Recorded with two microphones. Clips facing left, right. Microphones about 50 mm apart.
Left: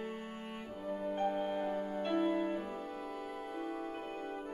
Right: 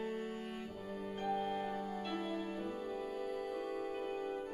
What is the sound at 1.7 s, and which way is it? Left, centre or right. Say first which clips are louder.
Music: left 6 dB; left.